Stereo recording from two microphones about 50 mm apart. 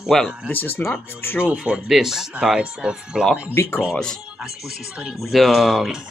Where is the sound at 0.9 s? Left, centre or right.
Left.